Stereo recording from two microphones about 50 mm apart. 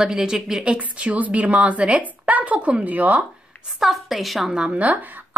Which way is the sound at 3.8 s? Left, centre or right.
Centre.